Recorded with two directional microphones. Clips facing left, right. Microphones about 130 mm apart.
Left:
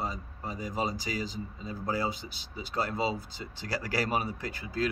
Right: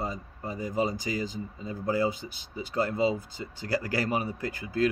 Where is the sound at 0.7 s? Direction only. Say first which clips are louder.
Right 4 dB; 50° right (ahead or behind).